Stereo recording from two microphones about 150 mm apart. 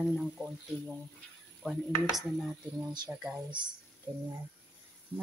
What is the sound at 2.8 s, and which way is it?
Speech, 30° right (ahead or behind).